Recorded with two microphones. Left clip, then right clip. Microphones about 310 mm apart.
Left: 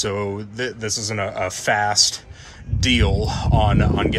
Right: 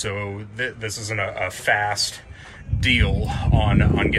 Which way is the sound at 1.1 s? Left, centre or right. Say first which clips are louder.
Right 3 dB; left.